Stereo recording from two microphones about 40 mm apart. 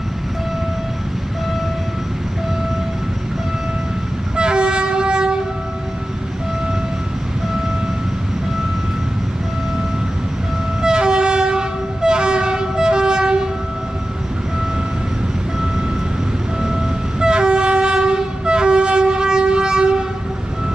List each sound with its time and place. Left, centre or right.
4.4 s train: right
10.8 s train: right
17.2 s train: right